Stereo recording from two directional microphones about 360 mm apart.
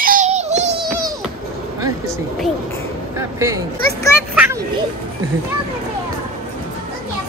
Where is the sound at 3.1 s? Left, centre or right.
Centre.